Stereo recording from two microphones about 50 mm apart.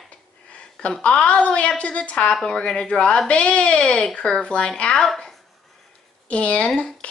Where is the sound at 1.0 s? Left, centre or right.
Left.